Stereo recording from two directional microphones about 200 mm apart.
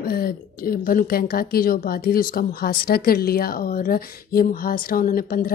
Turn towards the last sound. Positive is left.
turn(degrees=45)  # may be behind; listen again after turning